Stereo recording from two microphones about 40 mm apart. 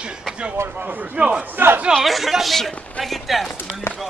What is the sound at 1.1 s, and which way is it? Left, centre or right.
Speech, right.